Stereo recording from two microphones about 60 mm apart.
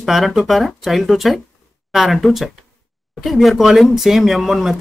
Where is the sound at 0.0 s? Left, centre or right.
Centre.